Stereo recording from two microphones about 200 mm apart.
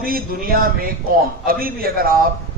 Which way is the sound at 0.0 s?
45° right (ahead or behind).